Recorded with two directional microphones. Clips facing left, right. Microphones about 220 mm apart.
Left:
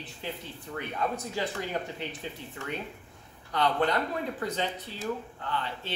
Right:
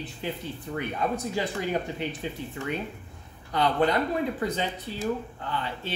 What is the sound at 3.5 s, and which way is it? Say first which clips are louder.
Speech: right 3 dB; 10° right (ahead or behind).